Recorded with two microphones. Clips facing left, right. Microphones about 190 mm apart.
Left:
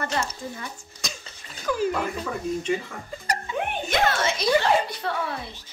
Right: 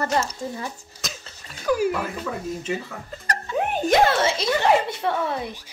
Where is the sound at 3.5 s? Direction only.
40° right (ahead or behind).